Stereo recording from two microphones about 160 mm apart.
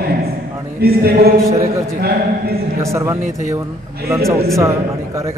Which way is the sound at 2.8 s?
15° right (ahead or behind).